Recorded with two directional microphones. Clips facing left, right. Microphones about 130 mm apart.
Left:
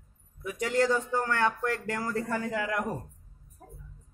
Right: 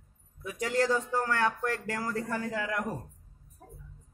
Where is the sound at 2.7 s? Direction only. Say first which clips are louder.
Left 2 dB; 20° left (ahead or behind).